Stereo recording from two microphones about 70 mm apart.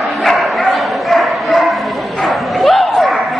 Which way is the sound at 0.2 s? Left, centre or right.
Centre.